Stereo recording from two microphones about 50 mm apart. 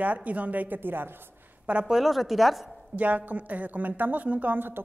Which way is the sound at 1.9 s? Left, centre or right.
Centre.